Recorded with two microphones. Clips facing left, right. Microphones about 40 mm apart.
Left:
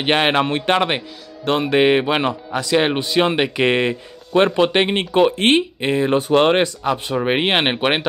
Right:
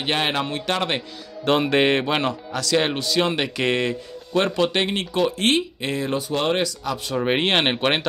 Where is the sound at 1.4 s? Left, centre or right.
Centre; by 6.2 s left.